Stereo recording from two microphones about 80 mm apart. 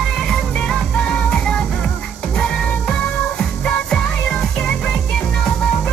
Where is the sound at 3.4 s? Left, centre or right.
Centre.